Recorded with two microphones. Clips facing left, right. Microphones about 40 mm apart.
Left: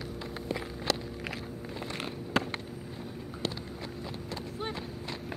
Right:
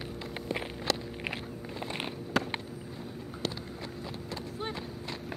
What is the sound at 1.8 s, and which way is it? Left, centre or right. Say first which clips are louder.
Biting: right 2 dB; right.